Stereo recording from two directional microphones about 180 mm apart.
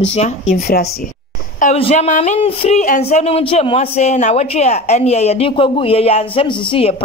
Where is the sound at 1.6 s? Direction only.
35° left (ahead or behind).